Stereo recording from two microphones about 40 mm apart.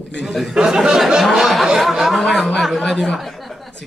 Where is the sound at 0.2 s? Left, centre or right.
Centre.